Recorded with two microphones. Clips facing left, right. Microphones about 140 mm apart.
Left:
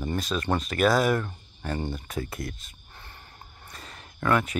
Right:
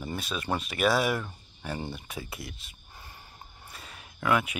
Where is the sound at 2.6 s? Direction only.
10° right (ahead or behind).